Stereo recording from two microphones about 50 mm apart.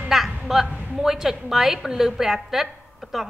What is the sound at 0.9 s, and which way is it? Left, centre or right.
A woman's voice, centre.